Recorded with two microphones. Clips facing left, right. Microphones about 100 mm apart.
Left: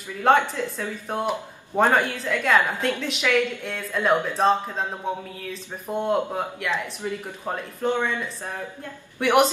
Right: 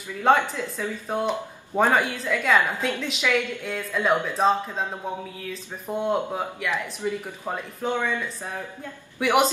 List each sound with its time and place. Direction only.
0.2 s a woman's voice: centre (ahead or behind)